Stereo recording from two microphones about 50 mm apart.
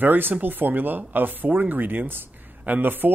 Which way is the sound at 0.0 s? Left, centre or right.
Right.